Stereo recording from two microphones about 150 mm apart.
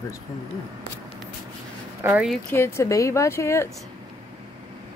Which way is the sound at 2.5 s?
15° left (ahead or behind).